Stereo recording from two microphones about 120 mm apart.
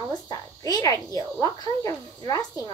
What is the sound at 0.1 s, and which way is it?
A woman's voice, 30° left (ahead or behind).